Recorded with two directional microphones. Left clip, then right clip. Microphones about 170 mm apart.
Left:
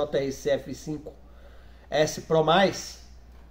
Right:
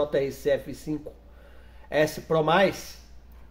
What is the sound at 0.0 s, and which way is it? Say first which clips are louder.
Speech: right 2 dB; 25° right (ahead or behind).